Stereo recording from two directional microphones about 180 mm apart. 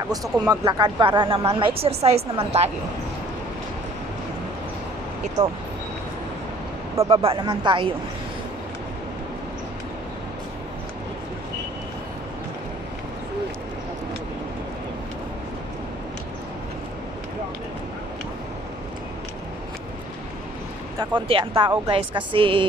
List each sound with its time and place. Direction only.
0.1 s a woman's voice: 20° right (ahead or behind)
5.4 s speech: 40° right (ahead or behind)
7.1 s a woman's voice: 30° right (ahead or behind)
21.3 s a woman's voice: 30° right (ahead or behind)